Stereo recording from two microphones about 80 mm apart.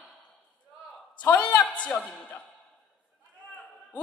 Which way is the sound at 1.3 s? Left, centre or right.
Centre.